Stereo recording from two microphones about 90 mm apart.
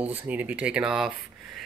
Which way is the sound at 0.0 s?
20° right (ahead or behind).